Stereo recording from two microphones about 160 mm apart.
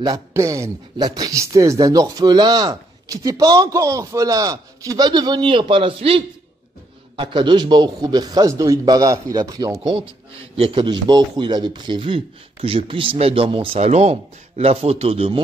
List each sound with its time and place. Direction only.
0.0 s a man's voice: 20° right (ahead or behind); by 15.4 s 35° right (ahead or behind)